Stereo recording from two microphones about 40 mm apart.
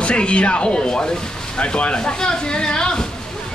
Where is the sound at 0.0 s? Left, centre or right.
Left.